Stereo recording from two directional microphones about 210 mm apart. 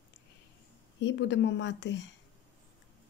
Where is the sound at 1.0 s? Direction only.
60° left (ahead or behind).